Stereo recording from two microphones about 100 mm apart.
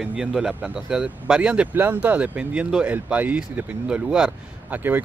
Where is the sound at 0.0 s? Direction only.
5° right (ahead or behind).